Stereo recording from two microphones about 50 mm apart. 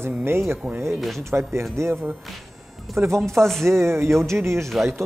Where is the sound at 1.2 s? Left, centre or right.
Right.